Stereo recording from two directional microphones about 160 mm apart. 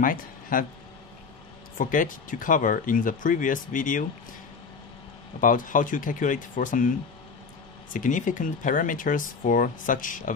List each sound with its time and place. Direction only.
0.0 s speech: 60° left (ahead or behind)
1.8 s speech: 55° left (ahead or behind)
5.4 s speech: 55° left (ahead or behind)
7.9 s speech: 55° left (ahead or behind)